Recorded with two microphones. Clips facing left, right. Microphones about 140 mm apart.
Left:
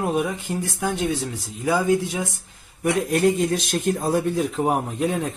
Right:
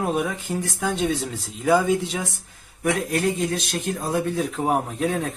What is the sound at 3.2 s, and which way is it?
Speech, 25° left (ahead or behind).